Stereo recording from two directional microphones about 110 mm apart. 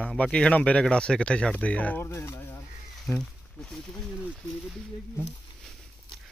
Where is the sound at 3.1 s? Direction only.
5° left (ahead or behind).